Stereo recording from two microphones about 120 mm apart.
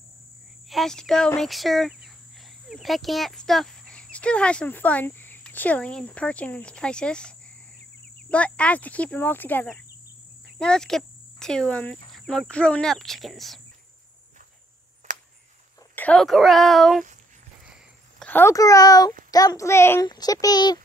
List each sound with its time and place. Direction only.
0.7 s cricket: centre (ahead or behind)
2.7 s speech: centre (ahead or behind)
15.1 s cricket: 90° right
15.9 s a sound: 15° left (ahead or behind)
16.2 s cricket: centre (ahead or behind)
18.2 s a sound: 15° left (ahead or behind)
18.5 s a child's voice: 30° left (ahead or behind)
20.1 s speech: 30° left (ahead or behind)